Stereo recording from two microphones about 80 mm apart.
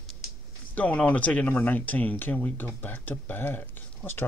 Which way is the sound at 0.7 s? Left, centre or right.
Centre.